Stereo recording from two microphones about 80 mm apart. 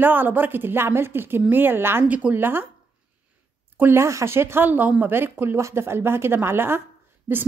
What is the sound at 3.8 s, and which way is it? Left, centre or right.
A woman's voice, right.